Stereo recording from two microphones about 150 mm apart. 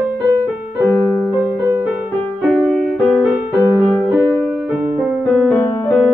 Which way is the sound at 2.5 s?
5° left (ahead or behind).